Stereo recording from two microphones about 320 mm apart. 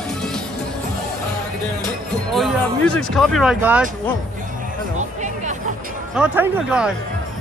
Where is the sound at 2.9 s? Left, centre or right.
Centre.